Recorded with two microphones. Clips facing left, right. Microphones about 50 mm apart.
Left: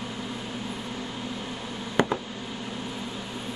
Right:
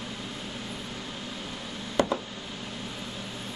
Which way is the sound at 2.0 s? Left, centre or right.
Left.